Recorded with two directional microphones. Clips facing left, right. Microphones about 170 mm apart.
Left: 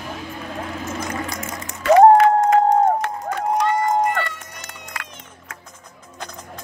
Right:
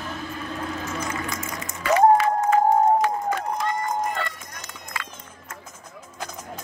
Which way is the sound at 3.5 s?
75° left (ahead or behind).